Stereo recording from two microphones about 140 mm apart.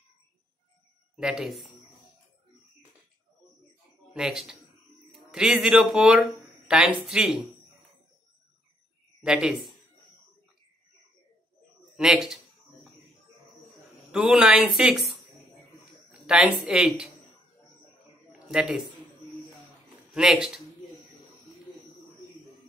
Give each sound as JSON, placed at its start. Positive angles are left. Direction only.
{"t": 1.1, "sound": "speech", "side_deg": -5}
{"t": 4.1, "sound": "speech", "side_deg": -5}
{"t": 9.2, "sound": "speech", "side_deg": -5}
{"t": 12.0, "sound": "speech", "side_deg": -5}
{"t": 14.1, "sound": "speech", "side_deg": -5}
{"t": 18.5, "sound": "speech", "side_deg": -5}
{"t": 20.2, "sound": "speech", "side_deg": -5}